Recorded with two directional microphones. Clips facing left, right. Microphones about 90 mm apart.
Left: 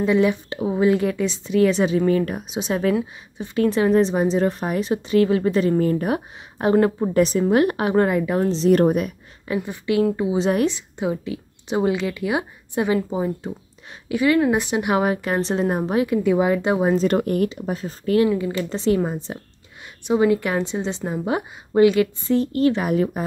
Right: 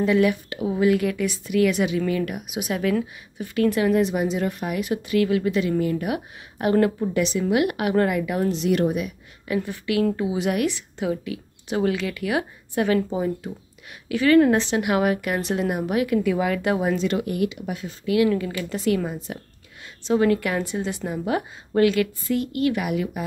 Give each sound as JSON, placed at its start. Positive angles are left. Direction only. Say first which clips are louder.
{"t": 0.0, "sound": "a woman's voice", "louder": "left 1 dB", "side_deg": 25}
{"t": 7.0, "sound": "a woman's voice", "louder": "left 5 dB", "side_deg": 40}
{"t": 9.6, "sound": "a woman's voice", "louder": "left 3 dB", "side_deg": 20}
{"t": 16.9, "sound": "a woman's voice", "louder": "left 5 dB", "side_deg": 45}
{"t": 20.1, "sound": "a woman's voice", "louder": "left 2 dB", "side_deg": 15}